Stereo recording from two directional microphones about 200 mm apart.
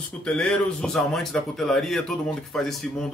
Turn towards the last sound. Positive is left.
turn(degrees=0)  # may be behind; listen again after turning